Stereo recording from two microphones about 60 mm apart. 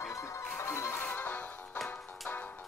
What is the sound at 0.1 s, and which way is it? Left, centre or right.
Music, left.